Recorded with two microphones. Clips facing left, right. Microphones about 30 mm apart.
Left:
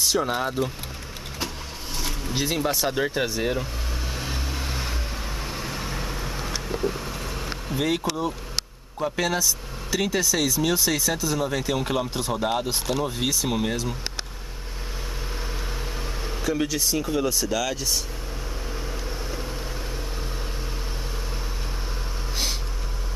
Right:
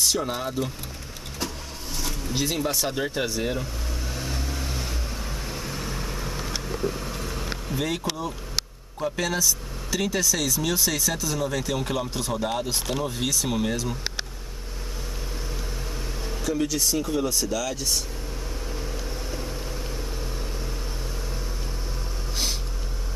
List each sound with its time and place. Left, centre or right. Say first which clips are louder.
0.0 s vehicle: left 2 dB; centre
0.3 s speech: left 3 dB; centre
2.0 s speech: even; centre
4.1 s vehicle: even; centre
9.0 s speech: left 1 dB; centre
16.3 s a sound: left 1 dB; left
16.6 s speech: even; centre